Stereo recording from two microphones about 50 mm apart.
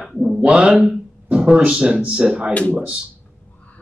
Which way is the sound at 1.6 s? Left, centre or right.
Centre.